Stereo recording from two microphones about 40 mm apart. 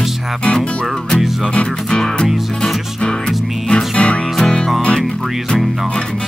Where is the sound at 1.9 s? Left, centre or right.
Centre.